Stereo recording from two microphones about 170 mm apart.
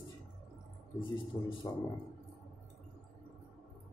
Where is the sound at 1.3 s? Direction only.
25° left (ahead or behind).